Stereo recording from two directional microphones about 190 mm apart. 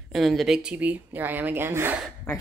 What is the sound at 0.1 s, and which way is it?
A woman's voice, centre (ahead or behind).